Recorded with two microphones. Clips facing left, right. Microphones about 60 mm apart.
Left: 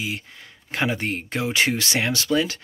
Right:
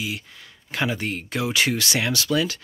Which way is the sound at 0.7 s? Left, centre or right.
Left.